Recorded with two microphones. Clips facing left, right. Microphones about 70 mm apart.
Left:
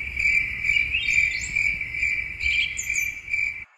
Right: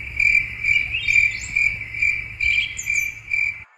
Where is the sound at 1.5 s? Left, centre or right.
Right.